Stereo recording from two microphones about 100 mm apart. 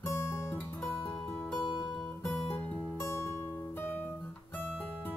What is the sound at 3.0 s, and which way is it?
Music, 25° left (ahead or behind).